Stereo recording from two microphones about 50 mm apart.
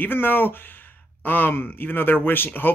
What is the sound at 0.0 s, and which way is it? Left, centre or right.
Speech, left.